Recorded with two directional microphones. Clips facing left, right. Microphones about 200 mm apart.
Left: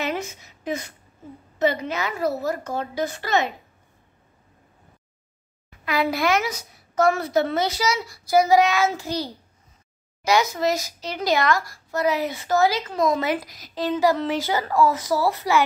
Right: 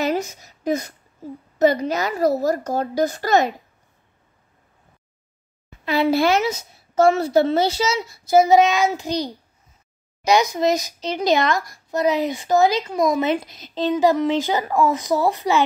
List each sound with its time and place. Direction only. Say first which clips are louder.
0.0 s a sound: right 5 dB; 40° right (ahead or behind)
1.6 s a woman's voice: right 5 dB; 40° right (ahead or behind)
5.7 s speech: right 5 dB; 25° right (ahead or behind)